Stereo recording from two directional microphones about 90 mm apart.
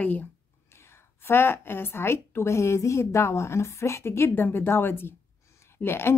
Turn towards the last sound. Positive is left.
turn(degrees=25)  # may be behind; listen again after turning